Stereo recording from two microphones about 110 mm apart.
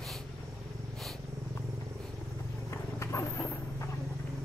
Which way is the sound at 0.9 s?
5° left (ahead or behind).